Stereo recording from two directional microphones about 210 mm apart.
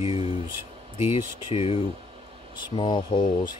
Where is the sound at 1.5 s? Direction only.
30° left (ahead or behind).